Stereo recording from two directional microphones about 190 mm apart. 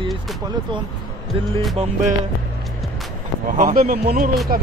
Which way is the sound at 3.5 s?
45° right (ahead or behind).